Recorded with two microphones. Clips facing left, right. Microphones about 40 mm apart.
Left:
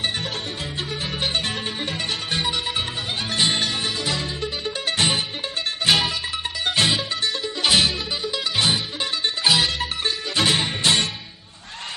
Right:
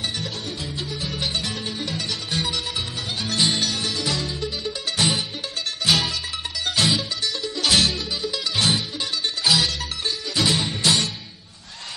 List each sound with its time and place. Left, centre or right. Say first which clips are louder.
1.0 s music: left 2 dB; left
5.9 s music: left 1 dB; left
9.4 s music: left 1 dB; left